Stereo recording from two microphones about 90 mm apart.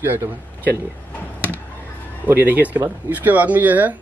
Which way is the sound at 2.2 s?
20° right (ahead or behind).